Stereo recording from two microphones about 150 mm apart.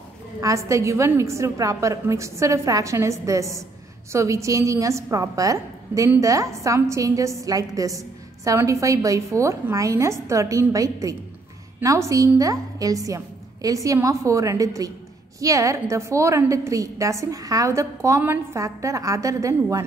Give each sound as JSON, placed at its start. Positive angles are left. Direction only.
{"t": 0.4, "sound": "a woman's voice", "side_deg": -20}